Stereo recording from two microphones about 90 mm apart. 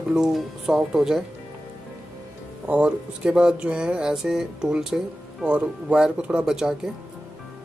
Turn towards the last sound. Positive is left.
turn(degrees=-5)  # may be behind; listen again after turning